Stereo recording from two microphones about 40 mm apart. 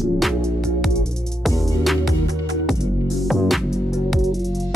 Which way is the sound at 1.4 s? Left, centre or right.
Centre.